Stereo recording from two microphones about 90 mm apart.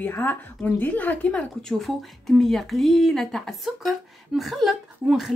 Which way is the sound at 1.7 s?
Centre (ahead or behind).